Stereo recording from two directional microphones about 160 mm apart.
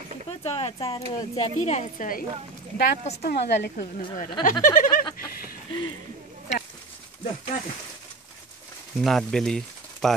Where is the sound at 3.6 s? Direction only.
85° left.